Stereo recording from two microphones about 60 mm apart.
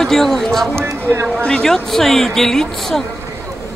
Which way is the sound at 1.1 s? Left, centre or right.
Right.